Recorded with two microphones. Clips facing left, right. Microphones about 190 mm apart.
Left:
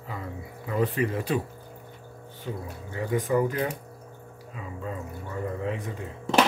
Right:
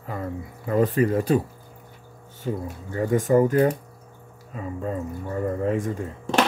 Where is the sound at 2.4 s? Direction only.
45° right (ahead or behind).